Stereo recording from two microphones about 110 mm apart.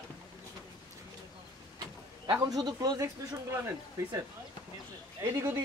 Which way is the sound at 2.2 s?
40° right (ahead or behind).